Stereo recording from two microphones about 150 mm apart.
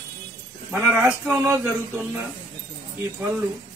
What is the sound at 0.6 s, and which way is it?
Speech, 10° right (ahead or behind).